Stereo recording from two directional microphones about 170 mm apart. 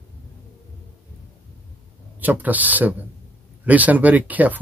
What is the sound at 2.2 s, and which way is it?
Speech, 10° right (ahead or behind).